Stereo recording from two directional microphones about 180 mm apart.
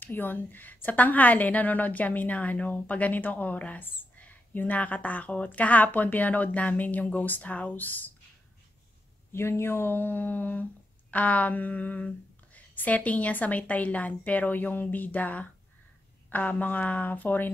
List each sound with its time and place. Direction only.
0.0 s a woman's voice: 10° left (ahead or behind)
9.3 s a woman's voice: 15° left (ahead or behind)